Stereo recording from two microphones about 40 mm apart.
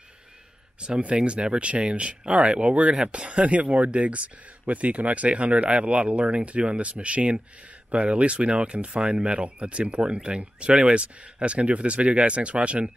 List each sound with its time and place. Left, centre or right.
0.7 s speech: right